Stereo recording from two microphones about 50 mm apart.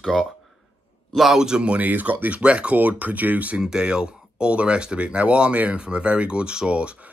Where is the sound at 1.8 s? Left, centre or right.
Right.